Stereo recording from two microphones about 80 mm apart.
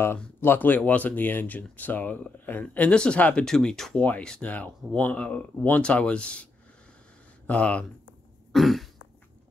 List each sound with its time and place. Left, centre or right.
0.4 s speech: left
7.4 s speech: centre
8.5 s throat clearing: centre